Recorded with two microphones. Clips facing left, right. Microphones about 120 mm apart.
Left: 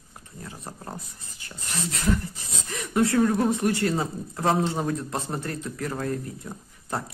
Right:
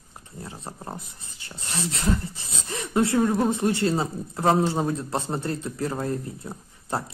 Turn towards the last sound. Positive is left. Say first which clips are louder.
# right 2 dB
turn(degrees=-25)  # may be behind; listen again after turning